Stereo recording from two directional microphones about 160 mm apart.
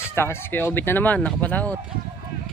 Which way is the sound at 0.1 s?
15° left (ahead or behind).